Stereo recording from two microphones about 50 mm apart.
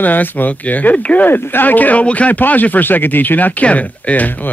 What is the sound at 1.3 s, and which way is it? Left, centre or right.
Speech, left.